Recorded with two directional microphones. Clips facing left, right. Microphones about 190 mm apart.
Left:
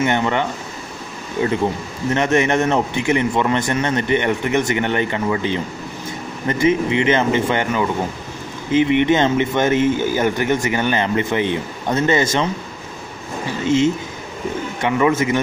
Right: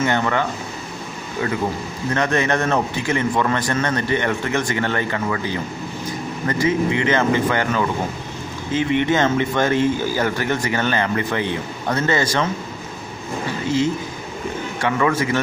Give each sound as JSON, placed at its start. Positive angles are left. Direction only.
{"t": 0.0, "sound": "speech", "side_deg": 20}
{"t": 14.8, "sound": "speech", "side_deg": 20}